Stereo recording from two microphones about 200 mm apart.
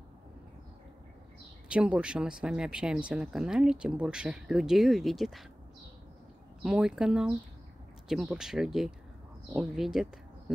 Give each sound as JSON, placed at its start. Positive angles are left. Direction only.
{"t": 1.7, "sound": "speech", "side_deg": -5}
{"t": 6.6, "sound": "speech", "side_deg": -5}